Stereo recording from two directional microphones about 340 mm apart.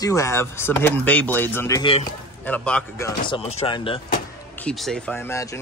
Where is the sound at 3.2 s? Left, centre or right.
Centre.